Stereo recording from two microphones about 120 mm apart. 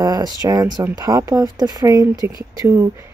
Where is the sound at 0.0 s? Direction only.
35° right (ahead or behind).